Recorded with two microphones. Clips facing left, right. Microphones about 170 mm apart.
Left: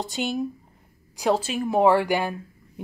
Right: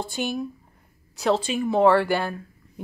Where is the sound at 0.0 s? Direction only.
20° left (ahead or behind).